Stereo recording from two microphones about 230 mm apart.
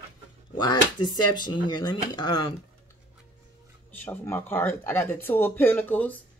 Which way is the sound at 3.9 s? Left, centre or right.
Centre.